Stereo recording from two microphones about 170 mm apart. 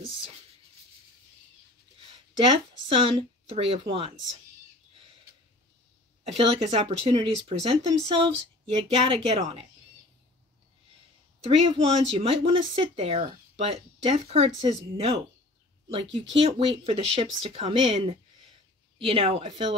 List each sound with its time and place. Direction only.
2.0 s a woman's voice: 30° right (ahead or behind)
6.2 s speech: 35° right (ahead or behind)
11.4 s speech: 35° right (ahead or behind)